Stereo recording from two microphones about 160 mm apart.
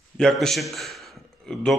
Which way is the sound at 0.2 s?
5° left (ahead or behind).